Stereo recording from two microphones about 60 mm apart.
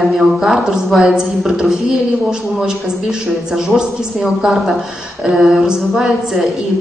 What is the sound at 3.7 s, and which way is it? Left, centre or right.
A woman's voice, centre.